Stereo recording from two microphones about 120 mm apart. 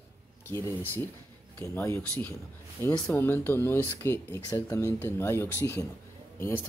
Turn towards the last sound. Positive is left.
turn(degrees=20)  # may be behind; listen again after turning